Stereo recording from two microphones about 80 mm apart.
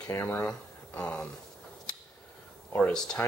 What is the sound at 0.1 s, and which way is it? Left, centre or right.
Speech, left.